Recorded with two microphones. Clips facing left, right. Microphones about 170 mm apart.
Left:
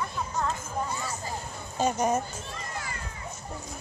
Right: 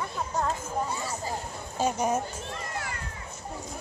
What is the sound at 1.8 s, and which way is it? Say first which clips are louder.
Speech: left 1 dB; 10° right (ahead or behind).